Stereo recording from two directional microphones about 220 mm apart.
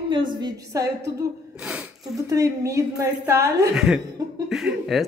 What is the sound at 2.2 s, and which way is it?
A woman's voice, 15° right (ahead or behind).